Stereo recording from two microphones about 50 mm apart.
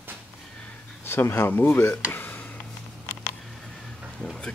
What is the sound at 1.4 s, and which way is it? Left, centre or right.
Speech, left.